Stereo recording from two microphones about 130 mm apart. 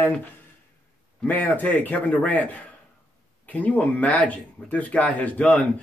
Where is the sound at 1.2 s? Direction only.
15° left (ahead or behind).